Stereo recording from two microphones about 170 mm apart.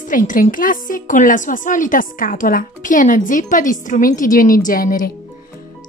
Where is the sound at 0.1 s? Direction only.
50° left (ahead or behind).